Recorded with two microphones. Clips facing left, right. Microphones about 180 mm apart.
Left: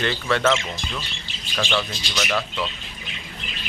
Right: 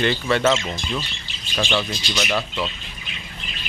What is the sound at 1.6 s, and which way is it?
Speech, 10° right (ahead or behind).